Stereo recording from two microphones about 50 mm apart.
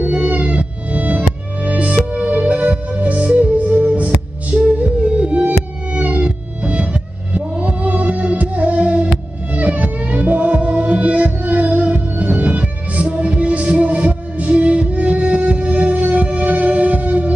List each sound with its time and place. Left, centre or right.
0.1 s music: right